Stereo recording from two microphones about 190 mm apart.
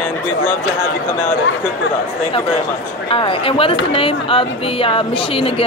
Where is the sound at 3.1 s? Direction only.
30° left (ahead or behind).